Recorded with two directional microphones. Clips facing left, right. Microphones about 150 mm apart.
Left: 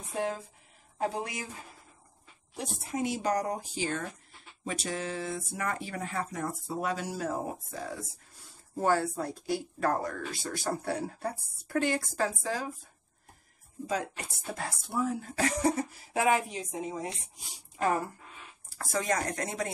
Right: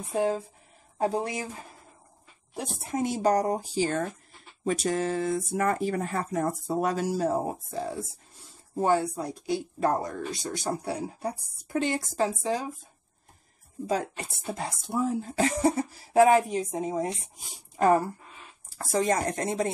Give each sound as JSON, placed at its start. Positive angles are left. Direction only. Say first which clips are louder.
{"t": 0.9, "sound": "speech", "louder": "right 5 dB", "side_deg": -35}
{"t": 2.5, "sound": "speech", "louder": "right 3 dB", "side_deg": -45}
{"t": 13.8, "sound": "speech", "louder": "right 4 dB", "side_deg": -35}
{"t": 14.4, "sound": "speech", "louder": "right 4 dB", "side_deg": -20}
{"t": 18.8, "sound": "speech", "louder": "right 5 dB", "side_deg": -30}